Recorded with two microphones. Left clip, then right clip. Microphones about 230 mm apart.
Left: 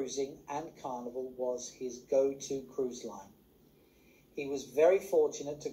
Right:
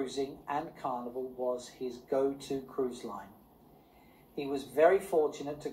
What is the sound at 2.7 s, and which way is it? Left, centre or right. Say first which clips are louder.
Speech: right 3 dB; right.